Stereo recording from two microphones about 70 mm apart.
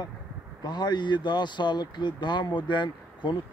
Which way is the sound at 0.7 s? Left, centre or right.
Left.